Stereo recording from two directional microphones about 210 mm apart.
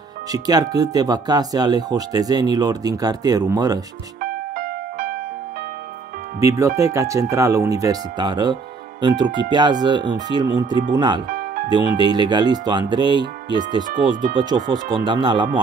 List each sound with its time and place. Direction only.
0.3 s speech: 15° right (ahead or behind)
4.2 s music: 40° right (ahead or behind)
6.4 s speech: 15° right (ahead or behind)
11.2 s music: 40° right (ahead or behind)
11.7 s speech: 20° right (ahead or behind)